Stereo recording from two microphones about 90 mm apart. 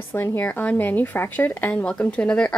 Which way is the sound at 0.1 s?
25° left (ahead or behind).